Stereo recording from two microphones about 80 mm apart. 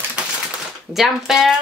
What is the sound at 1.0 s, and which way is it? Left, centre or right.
Speech, centre.